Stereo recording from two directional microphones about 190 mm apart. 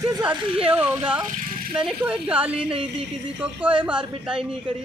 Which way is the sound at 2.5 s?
30° right (ahead or behind).